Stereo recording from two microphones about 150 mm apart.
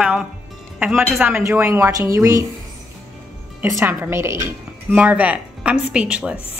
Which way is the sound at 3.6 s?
15° right (ahead or behind).